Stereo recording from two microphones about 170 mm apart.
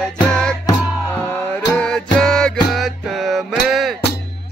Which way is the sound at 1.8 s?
5° left (ahead or behind).